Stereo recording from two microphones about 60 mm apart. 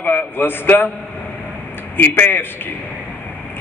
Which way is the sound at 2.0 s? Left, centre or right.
Left.